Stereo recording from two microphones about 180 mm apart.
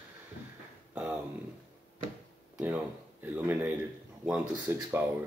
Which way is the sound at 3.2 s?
10° right (ahead or behind).